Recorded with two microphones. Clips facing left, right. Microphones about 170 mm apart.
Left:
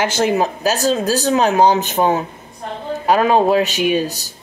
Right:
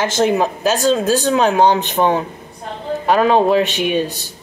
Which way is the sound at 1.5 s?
5° left (ahead or behind).